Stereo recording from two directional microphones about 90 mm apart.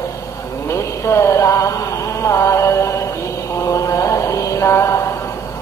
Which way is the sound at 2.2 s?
35° left (ahead or behind).